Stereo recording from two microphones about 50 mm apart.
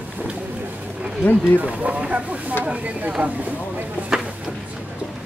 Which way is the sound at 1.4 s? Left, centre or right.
Right.